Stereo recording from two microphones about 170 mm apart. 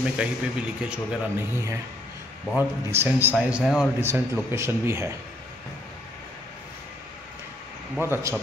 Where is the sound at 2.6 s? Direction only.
10° right (ahead or behind).